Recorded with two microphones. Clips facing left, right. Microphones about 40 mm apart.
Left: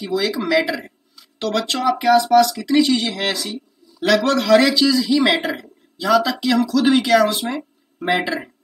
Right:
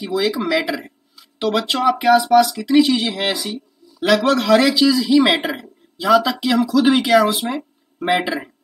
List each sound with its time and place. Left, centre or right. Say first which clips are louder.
0.0 s speech: right 1 dB; centre